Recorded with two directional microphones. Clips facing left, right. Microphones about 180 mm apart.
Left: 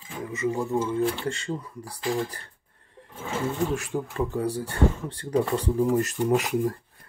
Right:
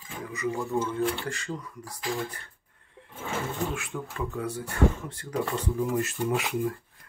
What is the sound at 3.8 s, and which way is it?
Speech, 35° left (ahead or behind).